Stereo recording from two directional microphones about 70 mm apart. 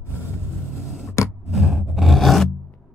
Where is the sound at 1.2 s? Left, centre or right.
Left.